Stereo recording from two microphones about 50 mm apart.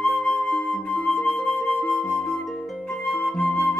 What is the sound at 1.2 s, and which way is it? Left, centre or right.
Music, left.